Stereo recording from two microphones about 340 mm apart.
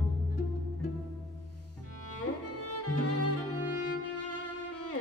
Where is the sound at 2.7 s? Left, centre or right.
Left.